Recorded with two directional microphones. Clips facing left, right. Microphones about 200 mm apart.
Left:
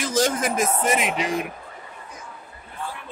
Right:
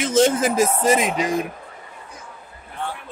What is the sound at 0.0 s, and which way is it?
Speech, 25° right (ahead or behind).